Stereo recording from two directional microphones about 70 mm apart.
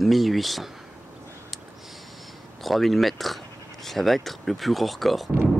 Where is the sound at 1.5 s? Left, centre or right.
Centre.